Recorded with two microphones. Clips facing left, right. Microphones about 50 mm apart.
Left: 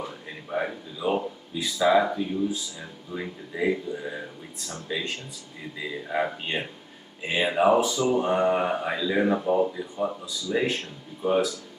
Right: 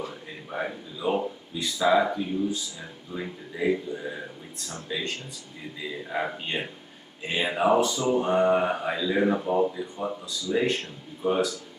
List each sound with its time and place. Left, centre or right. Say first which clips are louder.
0.5 s speech: left 3 dB; centre
6.1 s speech: left 3 dB; centre
6.5 s speech: left 1 dB; centre
7.2 s speech: left 2 dB; centre